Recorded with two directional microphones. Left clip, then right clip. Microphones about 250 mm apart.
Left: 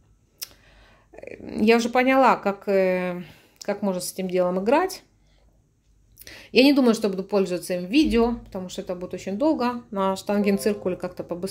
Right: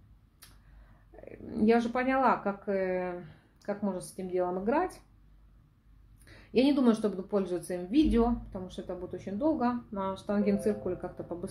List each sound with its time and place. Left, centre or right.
1.1 s speech: left
6.2 s a woman's voice: left